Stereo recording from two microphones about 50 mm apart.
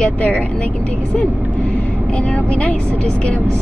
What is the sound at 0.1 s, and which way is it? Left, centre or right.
A woman's voice, left.